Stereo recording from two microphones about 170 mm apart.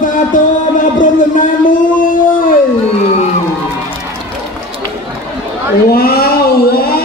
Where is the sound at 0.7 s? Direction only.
50° left (ahead or behind).